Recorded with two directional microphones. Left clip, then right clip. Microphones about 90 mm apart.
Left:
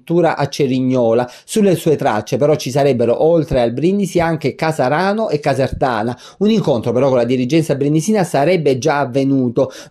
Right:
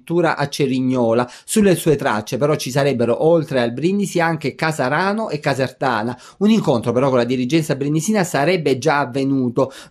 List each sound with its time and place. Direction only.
0.1 s speech: 25° left (ahead or behind)
6.4 s speech: 20° left (ahead or behind)